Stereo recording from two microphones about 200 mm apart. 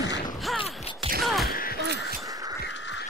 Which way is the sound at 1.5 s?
45° left (ahead or behind).